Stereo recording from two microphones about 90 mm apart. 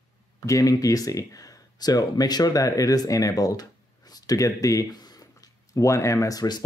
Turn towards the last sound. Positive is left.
turn(degrees=45)  # may be behind; listen again after turning